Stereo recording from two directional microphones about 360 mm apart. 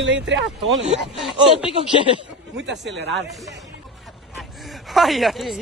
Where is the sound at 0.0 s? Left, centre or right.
Right.